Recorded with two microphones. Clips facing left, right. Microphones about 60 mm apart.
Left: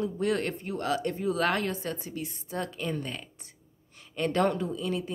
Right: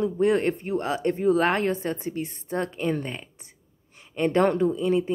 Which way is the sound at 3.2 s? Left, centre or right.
Right.